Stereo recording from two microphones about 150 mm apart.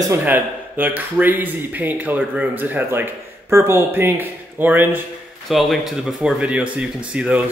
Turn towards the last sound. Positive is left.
turn(degrees=-10)  # may be behind; listen again after turning